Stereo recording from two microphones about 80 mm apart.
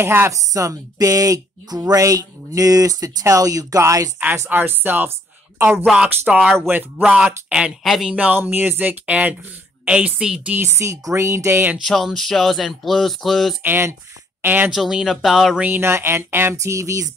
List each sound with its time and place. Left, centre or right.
0.0 s speech: right
0.3 s speech: right
4.5 s speech: right
6.2 s speech: centre
7.8 s speech: centre
8.4 s speech: right; by 10.5 s centre
10.5 s speech: right
10.9 s speech: right
11.8 s speech: centre
13.6 s speech: right
14.7 s speech: centre
15.6 s speech: right
16.5 s speech: right